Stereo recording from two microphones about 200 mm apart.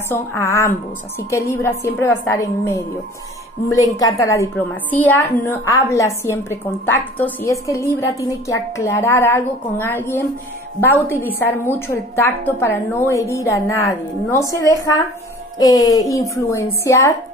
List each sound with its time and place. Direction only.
0.1 s a woman's voice: 15° left (ahead or behind)
15.6 s a woman's voice: 20° left (ahead or behind)